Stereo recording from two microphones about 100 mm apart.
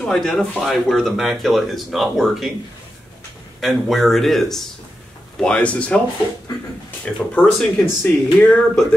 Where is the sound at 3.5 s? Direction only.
Centre (ahead or behind).